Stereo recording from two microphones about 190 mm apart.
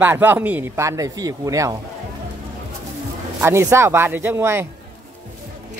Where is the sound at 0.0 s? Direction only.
10° right (ahead or behind).